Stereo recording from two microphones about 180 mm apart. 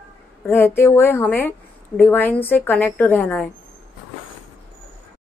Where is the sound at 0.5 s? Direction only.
15° left (ahead or behind).